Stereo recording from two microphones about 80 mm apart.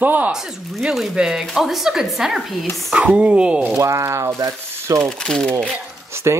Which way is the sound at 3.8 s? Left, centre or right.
Right.